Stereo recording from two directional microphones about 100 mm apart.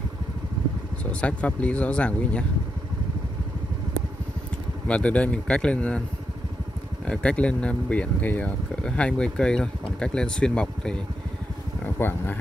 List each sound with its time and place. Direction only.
1.2 s speech: 10° left (ahead or behind)
4.8 s speech: 10° left (ahead or behind)
7.1 s speech: 10° left (ahead or behind)
11.8 s speech: 20° left (ahead or behind)